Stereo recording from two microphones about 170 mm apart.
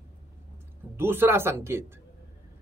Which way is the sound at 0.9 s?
15° right (ahead or behind).